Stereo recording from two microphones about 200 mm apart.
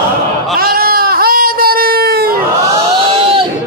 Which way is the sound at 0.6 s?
50° right (ahead or behind).